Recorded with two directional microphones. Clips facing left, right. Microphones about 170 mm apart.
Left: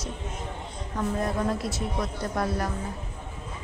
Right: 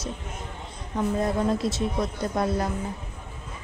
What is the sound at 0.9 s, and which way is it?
A woman's voice, 25° right (ahead or behind).